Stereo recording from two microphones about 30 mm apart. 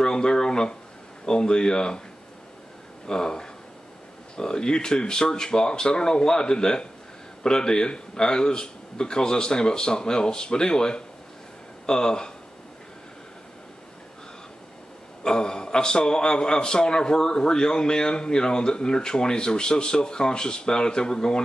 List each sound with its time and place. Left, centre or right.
0.0 s a man's voice: left
3.1 s a man's voice: left
15.2 s a man's voice: left